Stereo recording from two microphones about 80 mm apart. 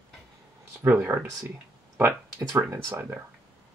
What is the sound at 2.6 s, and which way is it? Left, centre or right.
Speech, right.